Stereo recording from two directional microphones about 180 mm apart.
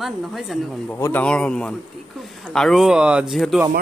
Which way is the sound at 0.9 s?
10° left (ahead or behind).